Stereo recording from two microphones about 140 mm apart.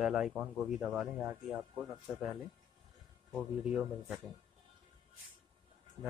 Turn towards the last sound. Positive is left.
turn(degrees=-30)  # may be behind; listen again after turning